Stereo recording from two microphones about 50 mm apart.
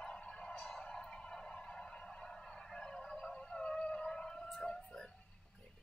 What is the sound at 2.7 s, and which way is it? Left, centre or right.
Siren, centre.